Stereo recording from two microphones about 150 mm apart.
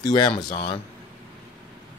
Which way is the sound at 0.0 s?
30° left (ahead or behind).